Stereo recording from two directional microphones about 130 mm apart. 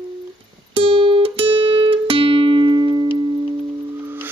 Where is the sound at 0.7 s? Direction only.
45° right (ahead or behind).